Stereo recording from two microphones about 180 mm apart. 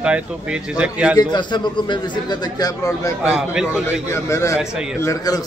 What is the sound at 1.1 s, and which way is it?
A man's voice, 25° left (ahead or behind).